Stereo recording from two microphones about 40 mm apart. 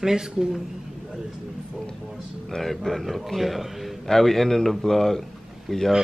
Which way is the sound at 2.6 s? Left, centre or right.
Centre.